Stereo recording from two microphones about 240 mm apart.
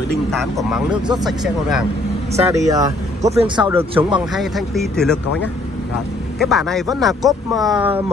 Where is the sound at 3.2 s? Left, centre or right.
Centre.